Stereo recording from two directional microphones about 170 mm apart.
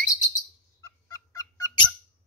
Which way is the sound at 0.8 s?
20° left (ahead or behind).